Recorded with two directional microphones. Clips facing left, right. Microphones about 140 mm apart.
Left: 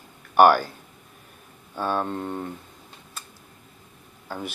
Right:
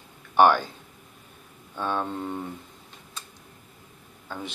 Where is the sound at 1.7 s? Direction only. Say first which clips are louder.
Left 2 dB; 5° left (ahead or behind).